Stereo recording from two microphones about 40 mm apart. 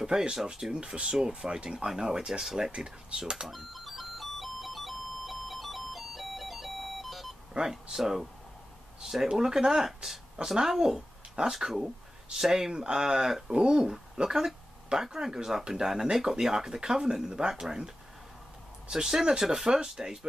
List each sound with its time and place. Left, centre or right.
0.0 s speech: centre
2.7 s speech: right
3.4 s music: centre
7.5 s speech: centre